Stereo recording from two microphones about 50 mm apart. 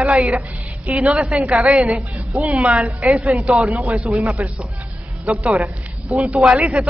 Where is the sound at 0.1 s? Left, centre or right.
Centre.